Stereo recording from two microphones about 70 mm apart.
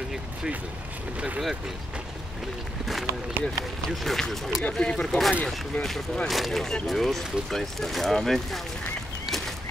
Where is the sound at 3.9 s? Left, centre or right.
Centre.